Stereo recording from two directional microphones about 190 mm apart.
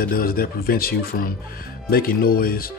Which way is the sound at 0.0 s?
50° left (ahead or behind).